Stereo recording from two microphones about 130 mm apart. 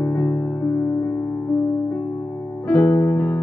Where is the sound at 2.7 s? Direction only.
15° left (ahead or behind).